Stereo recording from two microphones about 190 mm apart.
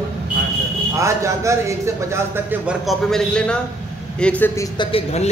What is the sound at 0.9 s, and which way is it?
Speech, 15° right (ahead or behind).